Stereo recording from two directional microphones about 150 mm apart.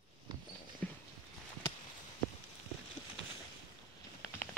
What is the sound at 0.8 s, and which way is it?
Horse, 5° left (ahead or behind).